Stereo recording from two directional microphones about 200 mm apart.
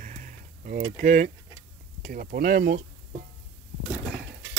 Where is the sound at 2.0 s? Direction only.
45° right (ahead or behind).